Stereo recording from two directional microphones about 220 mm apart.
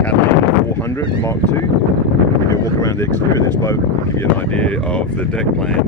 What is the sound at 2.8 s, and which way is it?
Speech, 15° left (ahead or behind).